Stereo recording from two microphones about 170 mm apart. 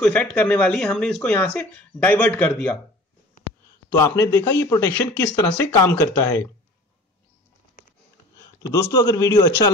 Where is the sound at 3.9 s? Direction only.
20° left (ahead or behind).